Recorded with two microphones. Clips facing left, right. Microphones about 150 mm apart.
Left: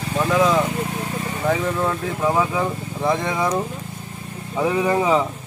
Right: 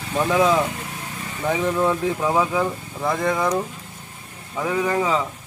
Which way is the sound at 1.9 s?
Centre (ahead or behind).